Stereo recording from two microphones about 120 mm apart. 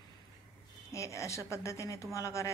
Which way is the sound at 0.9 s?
25° left (ahead or behind).